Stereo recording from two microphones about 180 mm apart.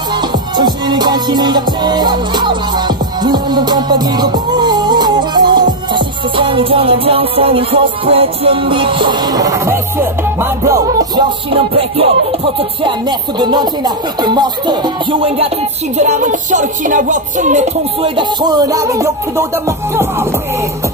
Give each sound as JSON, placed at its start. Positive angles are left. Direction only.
{"t": 0.6, "sound": "music", "side_deg": -25}
{"t": 10.6, "sound": "speech", "side_deg": -20}
{"t": 11.5, "sound": "music", "side_deg": -30}
{"t": 13.4, "sound": "speech", "side_deg": -25}
{"t": 16.0, "sound": "music", "side_deg": -45}
{"t": 18.0, "sound": "speech", "side_deg": -25}